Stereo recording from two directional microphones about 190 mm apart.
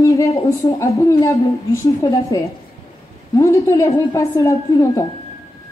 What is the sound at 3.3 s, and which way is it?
A woman's voice, 15° left (ahead or behind).